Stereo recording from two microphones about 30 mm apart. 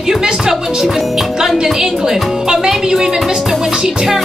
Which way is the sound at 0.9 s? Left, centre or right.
Centre.